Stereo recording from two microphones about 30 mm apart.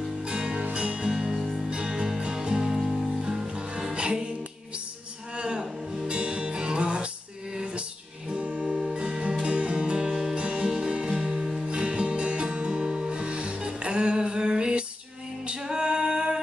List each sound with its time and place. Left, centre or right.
0.2 s music: right
2.5 s music: centre
2.8 s music: centre
3.2 s music: centre
3.4 s music: right
5.3 s a sound: right
5.6 s music: centre
6.0 s music: right
8.3 s music: right
8.6 s music: right
10.6 s music: centre
11.6 s music: right